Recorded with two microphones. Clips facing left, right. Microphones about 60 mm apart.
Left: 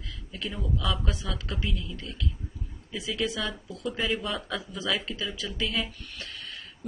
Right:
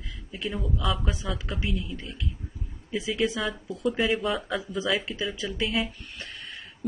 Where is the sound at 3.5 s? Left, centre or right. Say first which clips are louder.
Right 6 dB; centre.